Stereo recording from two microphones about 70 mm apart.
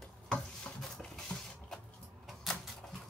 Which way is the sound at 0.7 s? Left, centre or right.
Centre.